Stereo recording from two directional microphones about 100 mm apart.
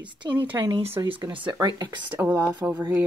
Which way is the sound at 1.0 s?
35° right (ahead or behind).